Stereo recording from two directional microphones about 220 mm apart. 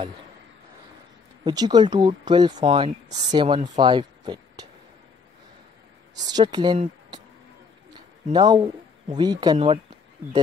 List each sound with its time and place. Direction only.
1.4 s speech: 20° right (ahead or behind)
6.3 s speech: 20° right (ahead or behind)
7.9 s a sound: 20° right (ahead or behind)
9.1 s speech: 20° right (ahead or behind)